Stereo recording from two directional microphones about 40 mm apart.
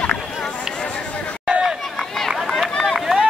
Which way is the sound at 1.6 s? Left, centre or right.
Centre.